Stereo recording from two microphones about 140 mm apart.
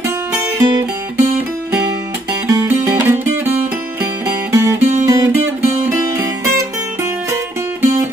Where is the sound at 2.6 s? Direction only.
20° right (ahead or behind).